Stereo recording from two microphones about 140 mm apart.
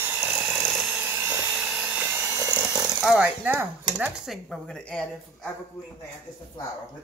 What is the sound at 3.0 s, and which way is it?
Speech, 5° right (ahead or behind).